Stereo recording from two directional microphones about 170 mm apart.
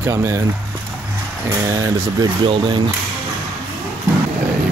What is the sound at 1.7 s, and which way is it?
Speech, 20° right (ahead or behind).